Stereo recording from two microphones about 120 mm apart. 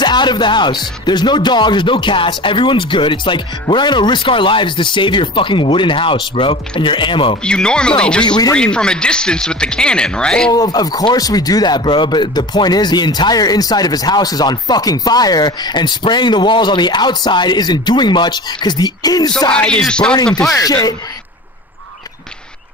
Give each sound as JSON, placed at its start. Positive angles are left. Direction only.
{"t": 0.0, "sound": "speech", "side_deg": 40}
{"t": 7.4, "sound": "speech", "side_deg": 5}
{"t": 10.5, "sound": "speech", "side_deg": 35}
{"t": 19.5, "sound": "speech", "side_deg": 10}
{"t": 20.5, "sound": "speech", "side_deg": 30}